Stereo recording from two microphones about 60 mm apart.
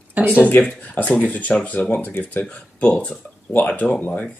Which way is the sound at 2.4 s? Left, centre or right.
Centre.